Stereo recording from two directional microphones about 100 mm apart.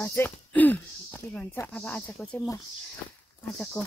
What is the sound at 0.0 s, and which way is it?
Speech, 20° left (ahead or behind).